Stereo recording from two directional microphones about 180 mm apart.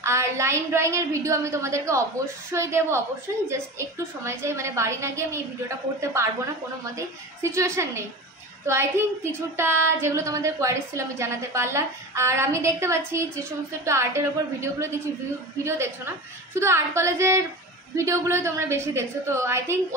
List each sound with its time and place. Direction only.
0.0 s speech: 15° right (ahead or behind)
6.8 s speech: 15° right (ahead or behind)